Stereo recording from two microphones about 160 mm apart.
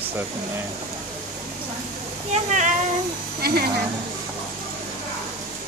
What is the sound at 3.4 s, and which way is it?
Speech, 70° right (ahead or behind).